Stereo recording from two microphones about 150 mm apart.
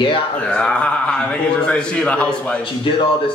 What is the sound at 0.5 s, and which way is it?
A man's voice, 5° left (ahead or behind).